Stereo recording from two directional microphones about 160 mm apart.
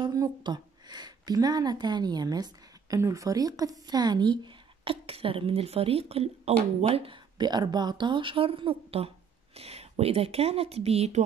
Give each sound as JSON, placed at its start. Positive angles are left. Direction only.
{"t": 0.0, "sound": "a woman's voice", "side_deg": -25}